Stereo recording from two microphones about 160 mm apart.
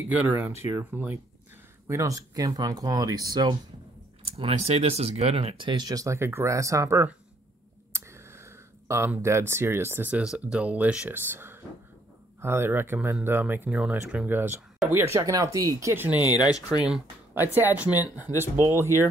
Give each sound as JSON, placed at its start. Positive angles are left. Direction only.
{"t": 0.1, "sound": "speech", "side_deg": -10}
{"t": 4.2, "sound": "speech", "side_deg": -35}
{"t": 16.2, "sound": "speech", "side_deg": 25}
{"t": 17.3, "sound": "speech", "side_deg": -15}
{"t": 17.8, "sound": "speech", "side_deg": 25}
{"t": 18.4, "sound": "speech", "side_deg": -15}